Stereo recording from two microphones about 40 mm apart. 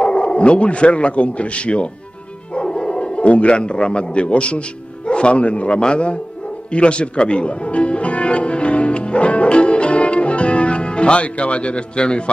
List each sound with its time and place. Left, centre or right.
0.0 s a man's voice: left
6.7 s music: left